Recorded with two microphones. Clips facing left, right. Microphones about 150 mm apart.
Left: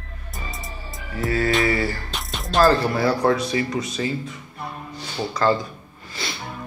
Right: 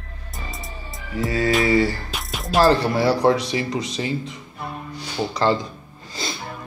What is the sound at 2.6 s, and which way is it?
Speech, 25° right (ahead or behind).